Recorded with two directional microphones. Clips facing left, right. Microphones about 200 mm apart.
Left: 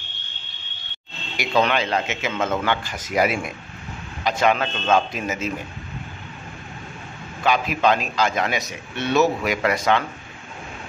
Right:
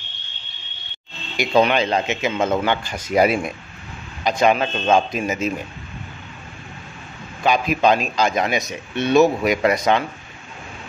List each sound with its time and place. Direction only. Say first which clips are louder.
1.3 s a man's voice: right 4 dB; 20° right (ahead or behind)
3.1 s a man's voice: right 4 dB; 30° right (ahead or behind)
4.2 s a man's voice: right 3 dB; 15° right (ahead or behind)
7.4 s a man's voice: right 2 dB; 15° right (ahead or behind)